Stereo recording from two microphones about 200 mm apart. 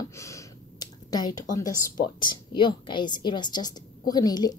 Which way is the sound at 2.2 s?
25° left (ahead or behind).